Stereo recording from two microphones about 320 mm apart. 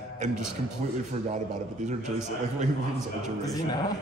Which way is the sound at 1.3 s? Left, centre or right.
Right.